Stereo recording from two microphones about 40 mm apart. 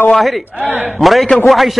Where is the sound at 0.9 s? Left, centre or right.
Centre.